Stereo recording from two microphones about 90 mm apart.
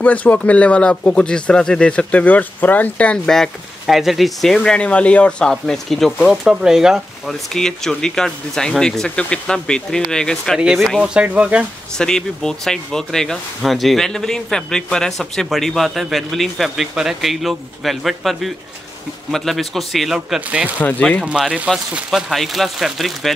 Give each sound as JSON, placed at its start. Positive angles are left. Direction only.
{"t": 0.0, "sound": "speech", "side_deg": 15}
{"t": 7.5, "sound": "speech", "side_deg": 5}
{"t": 10.6, "sound": "speech", "side_deg": -5}
{"t": 12.0, "sound": "speech", "side_deg": 5}
{"t": 20.3, "sound": "speech", "side_deg": -15}